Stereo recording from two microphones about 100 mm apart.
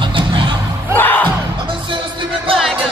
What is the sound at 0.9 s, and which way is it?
Music, 20° left (ahead or behind).